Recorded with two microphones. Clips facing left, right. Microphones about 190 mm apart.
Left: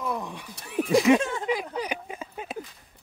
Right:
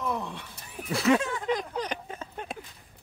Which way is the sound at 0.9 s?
15° left (ahead or behind).